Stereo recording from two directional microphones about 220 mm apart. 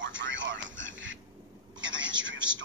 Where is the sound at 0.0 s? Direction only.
55° right (ahead or behind).